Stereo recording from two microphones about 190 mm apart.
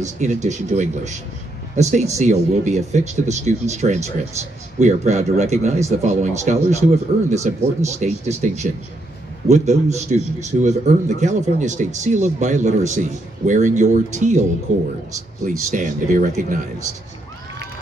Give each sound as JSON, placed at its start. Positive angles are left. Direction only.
{"t": 0.0, "sound": "speech", "side_deg": -40}
{"t": 9.5, "sound": "speech", "side_deg": -35}
{"t": 15.7, "sound": "speech", "side_deg": -45}